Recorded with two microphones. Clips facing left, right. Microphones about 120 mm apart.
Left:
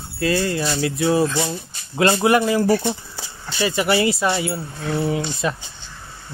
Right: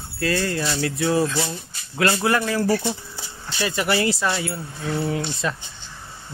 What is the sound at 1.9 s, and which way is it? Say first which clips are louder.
Speech: left 4 dB; 25° left (ahead or behind).